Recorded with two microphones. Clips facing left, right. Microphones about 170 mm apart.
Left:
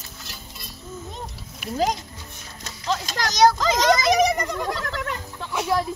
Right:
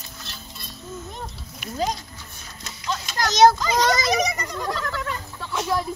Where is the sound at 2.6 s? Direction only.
40° left (ahead or behind).